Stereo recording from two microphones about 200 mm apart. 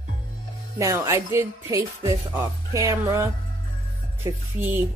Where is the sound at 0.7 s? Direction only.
15° right (ahead or behind).